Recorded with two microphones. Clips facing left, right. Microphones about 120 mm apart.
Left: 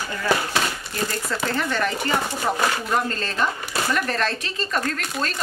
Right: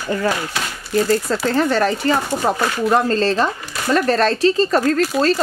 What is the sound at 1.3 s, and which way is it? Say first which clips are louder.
Speech: right 7 dB; 35° right (ahead or behind).